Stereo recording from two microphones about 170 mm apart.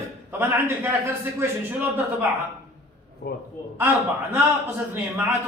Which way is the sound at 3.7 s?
10° right (ahead or behind).